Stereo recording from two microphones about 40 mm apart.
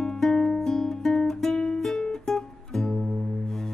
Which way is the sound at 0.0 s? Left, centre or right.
Centre.